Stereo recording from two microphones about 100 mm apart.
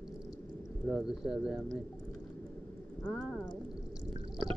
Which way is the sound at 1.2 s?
5° right (ahead or behind).